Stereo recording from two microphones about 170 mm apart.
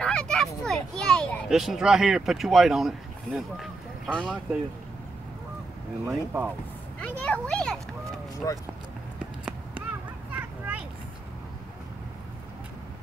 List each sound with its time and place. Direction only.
0.0 s a sound: 5° left (ahead or behind)
0.6 s a child's voice: 5° left (ahead or behind)
6.0 s speech: 10° right (ahead or behind)
7.0 s a child's voice: 10° left (ahead or behind)
8.4 s speech: 20° left (ahead or behind)
9.2 s run: 5° right (ahead or behind)
10.3 s a sound: 10° right (ahead or behind)